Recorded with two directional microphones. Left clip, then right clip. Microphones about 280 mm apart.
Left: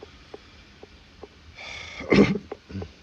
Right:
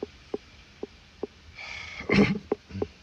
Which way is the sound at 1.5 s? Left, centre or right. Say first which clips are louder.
Left 1 dB; left.